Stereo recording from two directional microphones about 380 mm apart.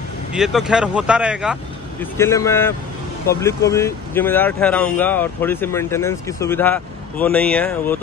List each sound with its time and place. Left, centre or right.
0.3 s speech: centre